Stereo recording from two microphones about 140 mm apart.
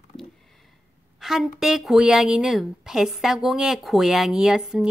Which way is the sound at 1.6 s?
5° right (ahead or behind).